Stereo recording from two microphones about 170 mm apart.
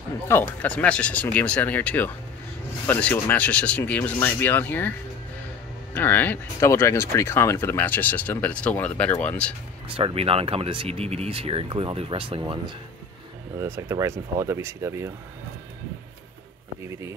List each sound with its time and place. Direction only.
0.3 s speech: 10° left (ahead or behind)
5.9 s speech: 10° left (ahead or behind)
9.8 s speech: 35° right (ahead or behind)
13.6 s speech: 15° right (ahead or behind)